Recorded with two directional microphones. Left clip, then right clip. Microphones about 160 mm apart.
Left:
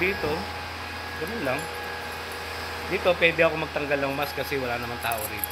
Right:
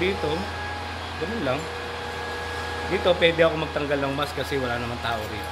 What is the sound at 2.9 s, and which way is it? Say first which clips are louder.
Speech: right 1 dB; 10° right (ahead or behind).